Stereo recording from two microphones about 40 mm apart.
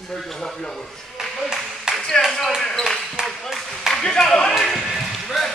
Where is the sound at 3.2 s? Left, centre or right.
Centre.